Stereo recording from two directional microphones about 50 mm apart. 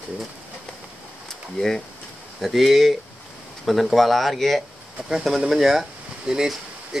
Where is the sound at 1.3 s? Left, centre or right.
Centre.